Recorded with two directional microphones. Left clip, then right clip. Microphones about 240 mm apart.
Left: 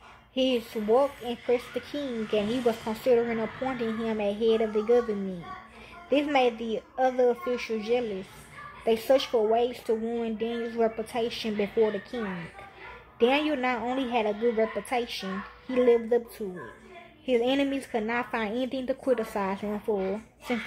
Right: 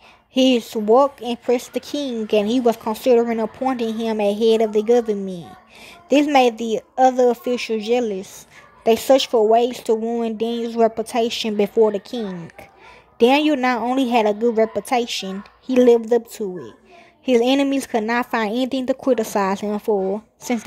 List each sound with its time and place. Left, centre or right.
0.3 s speech: right
6.0 s speech: right